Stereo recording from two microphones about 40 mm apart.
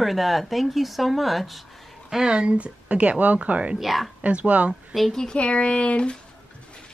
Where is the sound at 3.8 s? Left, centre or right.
Centre.